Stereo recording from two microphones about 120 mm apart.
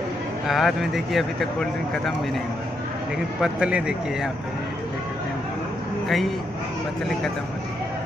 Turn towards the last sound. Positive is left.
turn(degrees=0)  # may be behind; listen again after turning